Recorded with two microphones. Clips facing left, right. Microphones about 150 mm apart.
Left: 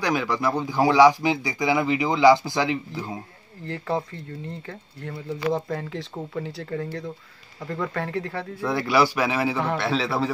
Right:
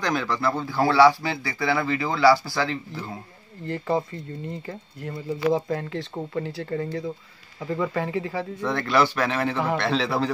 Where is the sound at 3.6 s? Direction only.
Centre (ahead or behind).